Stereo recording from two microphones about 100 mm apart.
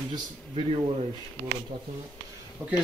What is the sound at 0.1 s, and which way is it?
Speech, 50° right (ahead or behind).